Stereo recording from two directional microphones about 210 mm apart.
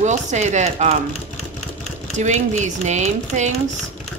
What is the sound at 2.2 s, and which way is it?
Speech, 35° right (ahead or behind).